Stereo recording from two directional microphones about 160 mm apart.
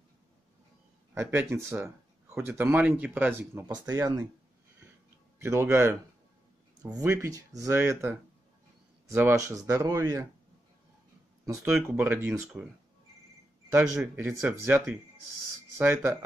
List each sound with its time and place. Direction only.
1.1 s speech: 15° right (ahead or behind)
3.7 s speech: 25° right (ahead or behind)
5.4 s speech: 15° right (ahead or behind)
7.0 s speech: 20° right (ahead or behind)
11.4 s speech: 15° right (ahead or behind)
14.1 s speech: 15° right (ahead or behind)
15.8 s speech: 15° right (ahead or behind)